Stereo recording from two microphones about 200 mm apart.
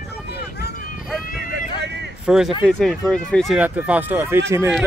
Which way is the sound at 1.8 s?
60° right (ahead or behind).